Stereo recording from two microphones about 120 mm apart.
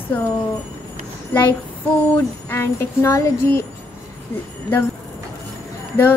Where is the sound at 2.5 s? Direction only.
20° left (ahead or behind).